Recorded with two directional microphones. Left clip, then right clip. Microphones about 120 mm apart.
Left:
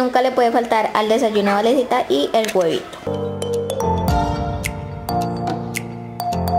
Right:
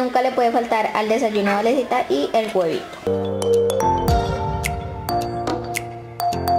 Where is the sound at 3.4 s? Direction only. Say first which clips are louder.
Right 5 dB; centre (ahead or behind).